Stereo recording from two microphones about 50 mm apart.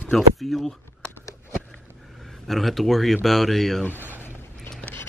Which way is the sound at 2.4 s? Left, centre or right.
Centre.